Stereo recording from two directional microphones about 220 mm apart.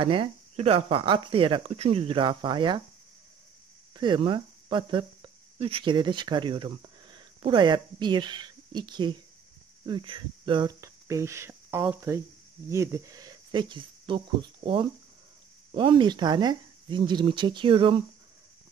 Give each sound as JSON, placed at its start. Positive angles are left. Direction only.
{"t": 0.0, "sound": "speech", "side_deg": -25}
{"t": 3.9, "sound": "speech", "side_deg": -20}